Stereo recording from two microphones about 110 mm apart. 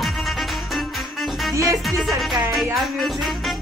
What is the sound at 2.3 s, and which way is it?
Music, centre (ahead or behind).